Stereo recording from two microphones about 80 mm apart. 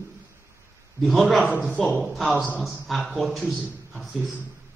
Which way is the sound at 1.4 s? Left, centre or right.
Centre.